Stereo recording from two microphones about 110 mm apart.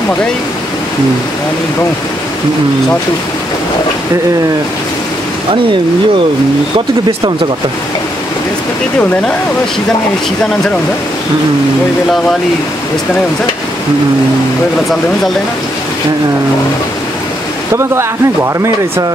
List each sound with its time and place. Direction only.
17.7 s speech: 25° right (ahead or behind)